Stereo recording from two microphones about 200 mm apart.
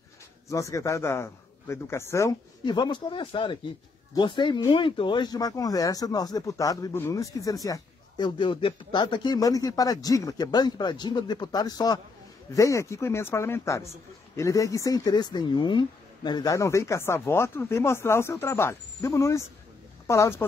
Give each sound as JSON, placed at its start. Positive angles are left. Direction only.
{"t": 0.5, "sound": "speech", "side_deg": 15}